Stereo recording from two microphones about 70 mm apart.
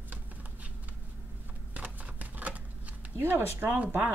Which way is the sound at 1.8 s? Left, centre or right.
Right.